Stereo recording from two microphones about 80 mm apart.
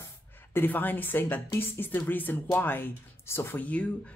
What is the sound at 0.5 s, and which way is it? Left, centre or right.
Speech, left.